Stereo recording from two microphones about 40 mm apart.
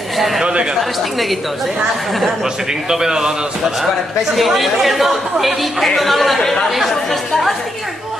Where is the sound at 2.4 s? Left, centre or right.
Centre.